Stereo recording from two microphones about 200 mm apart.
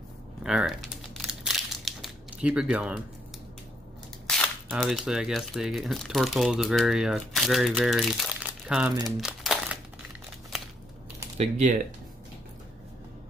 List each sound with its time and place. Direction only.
0.4 s crumpling: centre (ahead or behind)
4.3 s speech: centre (ahead or behind)
9.0 s crumpling: centre (ahead or behind)
11.3 s speech: 35° right (ahead or behind)